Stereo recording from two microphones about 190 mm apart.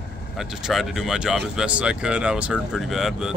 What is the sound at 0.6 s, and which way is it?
Speech, centre (ahead or behind).